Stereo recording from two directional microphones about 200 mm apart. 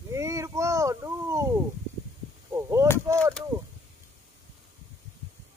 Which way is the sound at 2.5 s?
15° right (ahead or behind).